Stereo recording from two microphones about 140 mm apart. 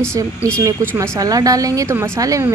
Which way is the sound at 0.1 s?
20° right (ahead or behind).